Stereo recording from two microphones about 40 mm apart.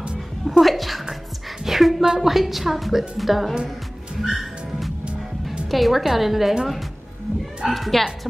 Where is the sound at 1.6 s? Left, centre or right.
Centre.